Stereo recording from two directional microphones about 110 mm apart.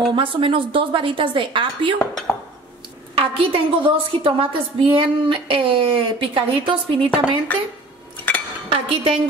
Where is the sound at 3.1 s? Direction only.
55° right (ahead or behind).